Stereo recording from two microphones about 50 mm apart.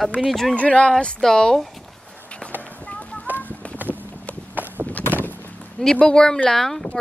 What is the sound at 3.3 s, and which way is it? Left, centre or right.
Fowl, right.